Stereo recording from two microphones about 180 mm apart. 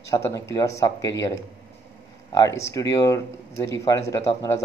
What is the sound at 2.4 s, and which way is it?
Speech, 15° left (ahead or behind).